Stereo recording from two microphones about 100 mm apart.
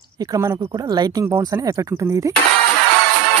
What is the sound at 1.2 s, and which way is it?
Speech, 30° right (ahead or behind).